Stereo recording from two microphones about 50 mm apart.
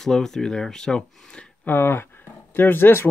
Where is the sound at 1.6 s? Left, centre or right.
Left.